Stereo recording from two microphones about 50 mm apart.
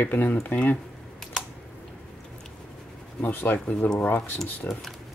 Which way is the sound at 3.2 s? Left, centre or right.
Left.